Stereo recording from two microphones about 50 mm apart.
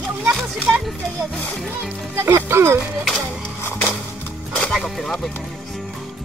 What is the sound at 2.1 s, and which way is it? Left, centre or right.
Speech, right.